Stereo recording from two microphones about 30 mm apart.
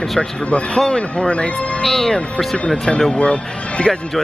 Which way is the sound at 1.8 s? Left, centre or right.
Centre.